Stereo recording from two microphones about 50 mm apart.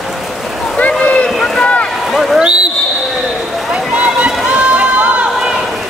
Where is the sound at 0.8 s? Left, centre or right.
Left.